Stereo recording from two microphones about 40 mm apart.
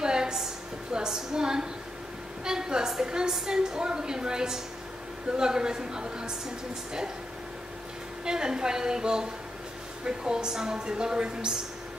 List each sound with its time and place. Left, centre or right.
0.0 s a sound: centre
0.9 s a woman's voice: centre
8.3 s a woman's voice: centre